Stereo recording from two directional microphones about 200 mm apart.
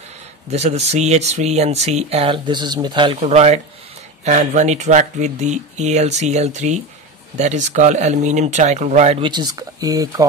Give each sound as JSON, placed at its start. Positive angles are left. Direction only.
{"t": 0.5, "sound": "speech", "side_deg": -35}